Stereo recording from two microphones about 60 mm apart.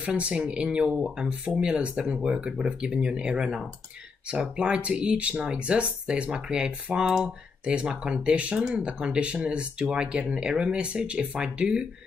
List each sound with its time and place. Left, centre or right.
0.0 s speech: centre